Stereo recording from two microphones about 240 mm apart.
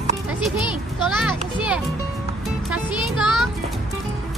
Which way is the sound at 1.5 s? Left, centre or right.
Centre.